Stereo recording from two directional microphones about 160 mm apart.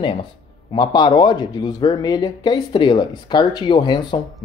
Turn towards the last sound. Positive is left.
turn(degrees=30)  # may be behind; listen again after turning